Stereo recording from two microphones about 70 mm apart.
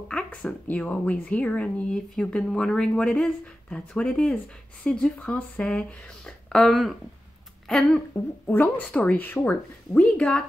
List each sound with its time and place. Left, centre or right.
0.1 s speech: centre
8.1 s speech: left